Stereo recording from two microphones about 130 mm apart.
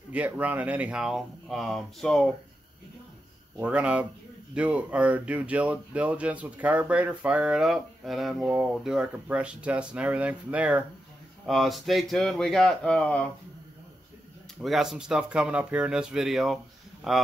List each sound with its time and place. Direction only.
0.1 s speech: 10° right (ahead or behind)
3.6 s speech: 10° right (ahead or behind)
11.4 s speech: centre (ahead or behind)
14.6 s speech: 5° right (ahead or behind)